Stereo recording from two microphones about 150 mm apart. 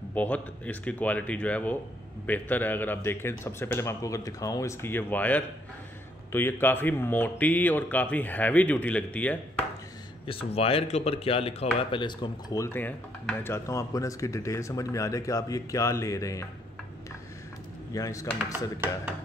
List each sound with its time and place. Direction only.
0.1 s speech: 10° left (ahead or behind)
10.2 s speech: 40° left (ahead or behind); by 16.4 s 20° left (ahead or behind)
17.9 s speech: 20° left (ahead or behind)